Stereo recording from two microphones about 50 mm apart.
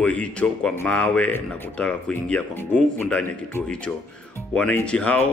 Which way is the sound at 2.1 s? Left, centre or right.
Centre.